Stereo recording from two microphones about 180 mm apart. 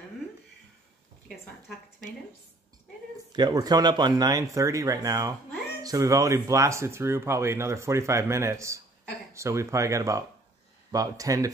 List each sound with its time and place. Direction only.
3.3 s speech: 20° right (ahead or behind)